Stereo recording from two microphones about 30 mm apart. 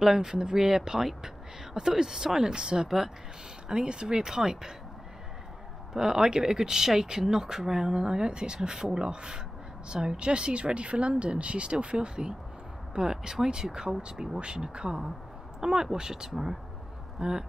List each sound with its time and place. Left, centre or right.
0.0 s speech: centre; by 4.2 s right
4.2 s speech: centre
5.9 s speech: right
17.2 s speech: right